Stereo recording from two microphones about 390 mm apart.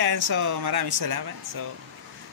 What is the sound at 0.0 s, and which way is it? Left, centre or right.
Speech, right.